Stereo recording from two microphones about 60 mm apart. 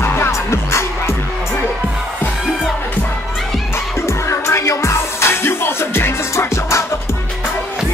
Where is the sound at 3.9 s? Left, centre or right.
Left.